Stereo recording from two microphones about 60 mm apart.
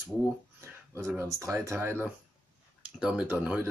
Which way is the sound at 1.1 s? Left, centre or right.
Right.